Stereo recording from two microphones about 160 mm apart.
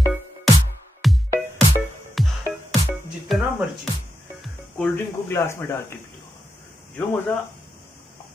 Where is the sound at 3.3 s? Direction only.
Centre (ahead or behind).